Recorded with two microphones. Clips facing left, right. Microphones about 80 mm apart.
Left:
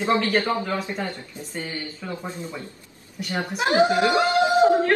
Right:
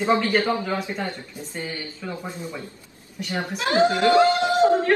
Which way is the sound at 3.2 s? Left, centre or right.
Centre.